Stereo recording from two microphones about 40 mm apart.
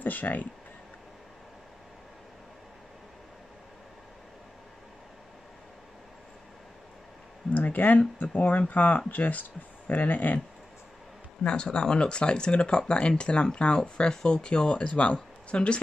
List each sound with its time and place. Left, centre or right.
0.0 s speech: left
7.5 s speech: left
11.4 s speech: left